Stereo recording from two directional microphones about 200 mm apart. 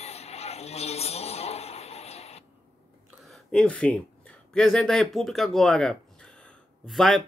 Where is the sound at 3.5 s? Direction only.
5° left (ahead or behind).